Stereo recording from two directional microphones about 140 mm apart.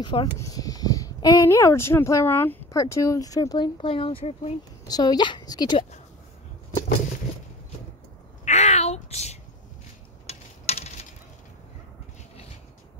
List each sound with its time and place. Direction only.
0.0 s speech: 35° left (ahead or behind)
4.8 s speech: 30° left (ahead or behind)
8.5 s a sound: 50° left (ahead or behind)